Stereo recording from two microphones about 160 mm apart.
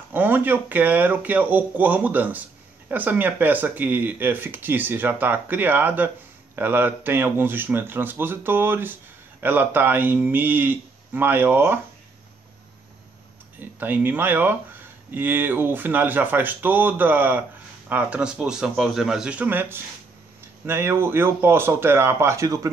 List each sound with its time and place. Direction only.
0.1 s speech: 10° right (ahead or behind)
13.6 s speech: 10° right (ahead or behind)